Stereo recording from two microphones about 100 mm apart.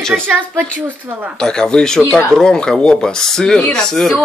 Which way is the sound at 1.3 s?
5° left (ahead or behind).